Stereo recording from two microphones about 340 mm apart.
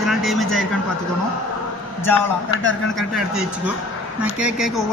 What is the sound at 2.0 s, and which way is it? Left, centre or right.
A man's voice, centre.